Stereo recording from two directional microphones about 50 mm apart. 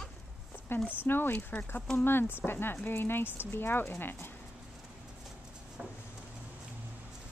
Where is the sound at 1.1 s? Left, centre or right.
Left.